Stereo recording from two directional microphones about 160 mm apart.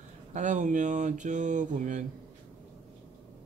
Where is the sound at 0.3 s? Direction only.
50° right (ahead or behind).